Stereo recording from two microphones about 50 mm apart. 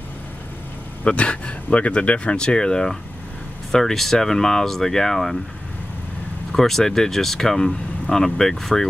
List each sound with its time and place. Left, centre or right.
1.0 s speech: left; by 5.4 s centre
6.5 s speech: centre